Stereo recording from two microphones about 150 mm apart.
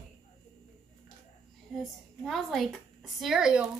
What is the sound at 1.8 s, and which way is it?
A woman's voice, centre (ahead or behind).